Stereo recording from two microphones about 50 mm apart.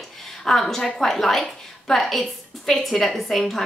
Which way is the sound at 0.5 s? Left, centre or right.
Centre.